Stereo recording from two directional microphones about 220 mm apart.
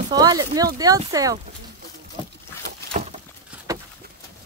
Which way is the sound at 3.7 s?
15° right (ahead or behind).